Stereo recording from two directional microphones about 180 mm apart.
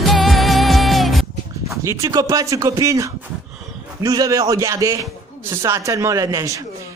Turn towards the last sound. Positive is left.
turn(degrees=-20)  # may be behind; listen again after turning